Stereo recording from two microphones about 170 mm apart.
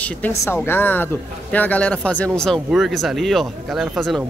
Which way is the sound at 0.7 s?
10° left (ahead or behind).